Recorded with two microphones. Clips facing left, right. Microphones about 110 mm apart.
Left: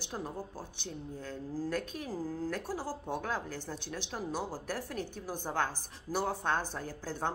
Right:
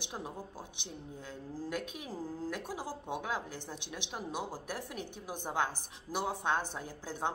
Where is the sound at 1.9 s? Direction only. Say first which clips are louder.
Left 3 dB; 15° right (ahead or behind).